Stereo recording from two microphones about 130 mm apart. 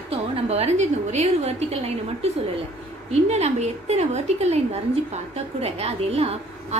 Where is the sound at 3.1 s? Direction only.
55° right (ahead or behind).